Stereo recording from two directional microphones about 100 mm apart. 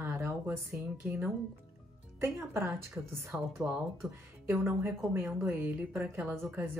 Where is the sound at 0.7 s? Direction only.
20° right (ahead or behind).